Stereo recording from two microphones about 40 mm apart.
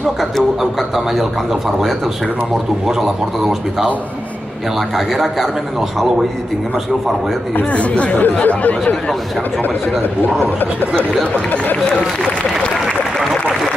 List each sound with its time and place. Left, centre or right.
0.0 s a man's voice: centre
2.9 s a man's voice: centre
7.7 s speech: left
8.2 s speech: left